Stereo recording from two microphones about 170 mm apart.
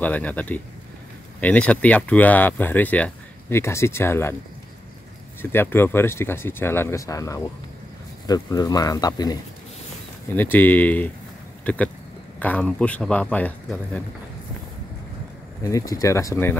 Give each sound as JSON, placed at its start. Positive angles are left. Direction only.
{"t": 0.0, "sound": "speech", "side_deg": 10}
{"t": 5.4, "sound": "speech", "side_deg": 15}
{"t": 10.3, "sound": "speech", "side_deg": 10}
{"t": 15.6, "sound": "speech", "side_deg": 20}